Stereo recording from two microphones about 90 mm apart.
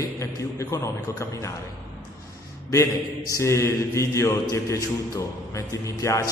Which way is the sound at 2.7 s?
35° left (ahead or behind).